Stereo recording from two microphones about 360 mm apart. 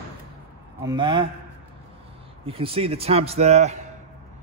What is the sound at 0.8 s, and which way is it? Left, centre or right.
Speech, centre.